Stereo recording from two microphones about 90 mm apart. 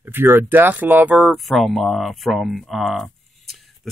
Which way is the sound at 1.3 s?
Centre (ahead or behind).